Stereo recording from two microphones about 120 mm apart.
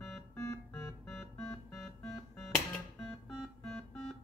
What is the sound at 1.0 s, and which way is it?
Music, 5° left (ahead or behind).